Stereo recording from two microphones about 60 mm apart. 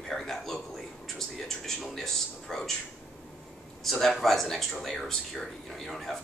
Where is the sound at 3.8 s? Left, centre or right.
Centre.